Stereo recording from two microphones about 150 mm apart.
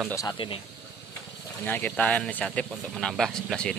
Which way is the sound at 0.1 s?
25° left (ahead or behind).